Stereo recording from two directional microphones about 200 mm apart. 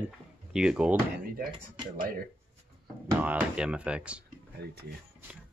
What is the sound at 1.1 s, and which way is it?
Speech, 50° right (ahead or behind).